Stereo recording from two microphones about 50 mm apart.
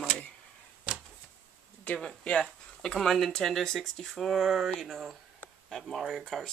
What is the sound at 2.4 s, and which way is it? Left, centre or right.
Speech, centre.